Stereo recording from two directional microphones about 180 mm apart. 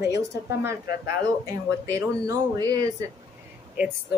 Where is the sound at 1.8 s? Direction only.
20° right (ahead or behind).